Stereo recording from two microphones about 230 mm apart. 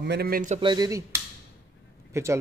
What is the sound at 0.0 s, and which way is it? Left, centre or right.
Speech, right.